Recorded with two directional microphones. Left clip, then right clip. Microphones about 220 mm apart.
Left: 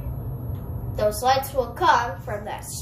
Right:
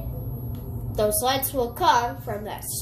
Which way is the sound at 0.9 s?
50° right (ahead or behind).